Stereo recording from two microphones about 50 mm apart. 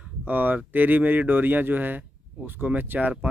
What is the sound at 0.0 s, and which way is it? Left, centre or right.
Speech, right.